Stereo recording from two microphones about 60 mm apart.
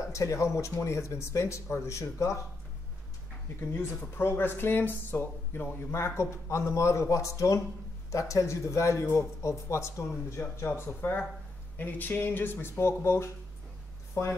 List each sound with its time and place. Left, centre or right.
0.0 s speech: left
3.7 s speech: left
10.4 s speech: left